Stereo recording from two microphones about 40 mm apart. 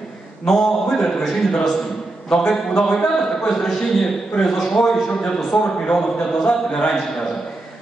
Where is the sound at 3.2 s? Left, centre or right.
Centre.